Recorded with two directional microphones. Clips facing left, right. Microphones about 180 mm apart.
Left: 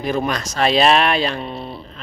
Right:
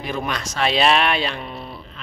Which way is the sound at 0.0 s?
40° left (ahead or behind).